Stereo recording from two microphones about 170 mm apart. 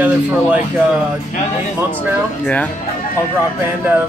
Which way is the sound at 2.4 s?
10° left (ahead or behind).